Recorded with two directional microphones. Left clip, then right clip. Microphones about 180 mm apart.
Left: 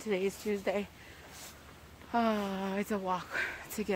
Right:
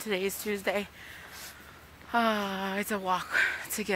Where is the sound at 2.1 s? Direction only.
Centre (ahead or behind).